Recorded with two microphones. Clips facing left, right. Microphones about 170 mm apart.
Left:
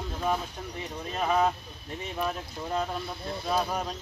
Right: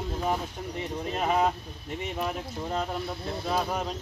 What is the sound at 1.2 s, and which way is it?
Speech, 15° right (ahead or behind).